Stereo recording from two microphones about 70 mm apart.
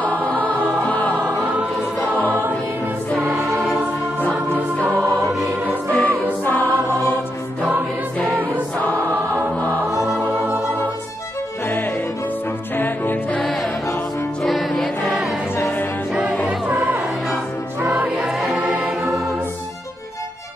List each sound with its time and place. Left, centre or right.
0.0 s music: left
2.1 s music: left
4.7 s music: left
6.4 s choir: left
8.7 s choir: left
11.6 s music: left
13.4 s music: centre
15.6 s music: left
16.4 s music: right
18.2 s choir: centre